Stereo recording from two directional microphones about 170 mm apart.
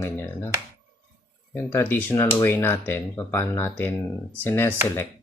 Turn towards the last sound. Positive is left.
turn(degrees=10)  # may be behind; listen again after turning